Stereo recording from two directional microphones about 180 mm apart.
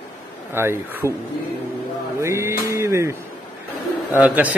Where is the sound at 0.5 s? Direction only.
15° right (ahead or behind).